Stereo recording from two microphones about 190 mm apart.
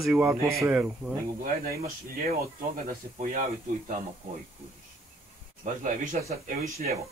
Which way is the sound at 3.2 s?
40° right (ahead or behind).